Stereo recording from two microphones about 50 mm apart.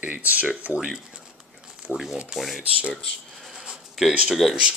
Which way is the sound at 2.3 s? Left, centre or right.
Centre.